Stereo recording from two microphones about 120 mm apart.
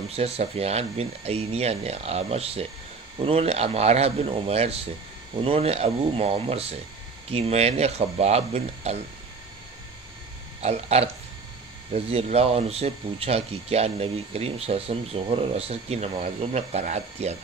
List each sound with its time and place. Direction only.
0.1 s speech: 55° right (ahead or behind)
10.6 s speech: 60° right (ahead or behind)